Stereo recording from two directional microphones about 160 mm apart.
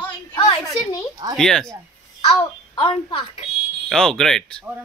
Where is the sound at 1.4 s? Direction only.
5° left (ahead or behind).